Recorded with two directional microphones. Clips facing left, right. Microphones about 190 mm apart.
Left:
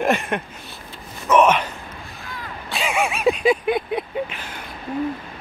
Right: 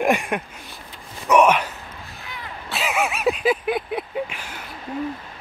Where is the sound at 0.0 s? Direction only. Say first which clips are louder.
Even; 15° right (ahead or behind).